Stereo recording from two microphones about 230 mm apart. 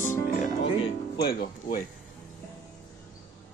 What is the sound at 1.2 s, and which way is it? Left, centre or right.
Speech, left.